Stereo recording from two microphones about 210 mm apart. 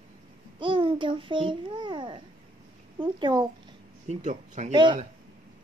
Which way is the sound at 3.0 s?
20° right (ahead or behind).